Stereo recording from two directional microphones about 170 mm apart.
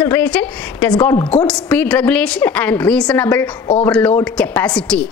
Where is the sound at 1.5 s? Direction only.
5° left (ahead or behind).